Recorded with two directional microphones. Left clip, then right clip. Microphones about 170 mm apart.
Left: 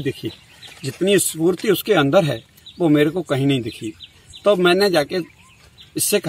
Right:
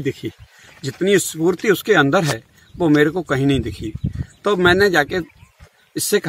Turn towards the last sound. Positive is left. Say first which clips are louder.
# right 1 dB
turn(degrees=-15)  # may be behind; listen again after turning